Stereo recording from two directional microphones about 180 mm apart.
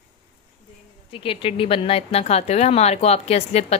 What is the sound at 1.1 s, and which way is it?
Speech, 30° left (ahead or behind).